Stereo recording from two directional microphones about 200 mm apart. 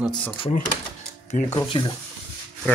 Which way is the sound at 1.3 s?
30° left (ahead or behind).